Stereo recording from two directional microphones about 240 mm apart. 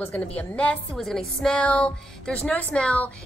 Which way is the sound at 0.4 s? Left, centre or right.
Centre.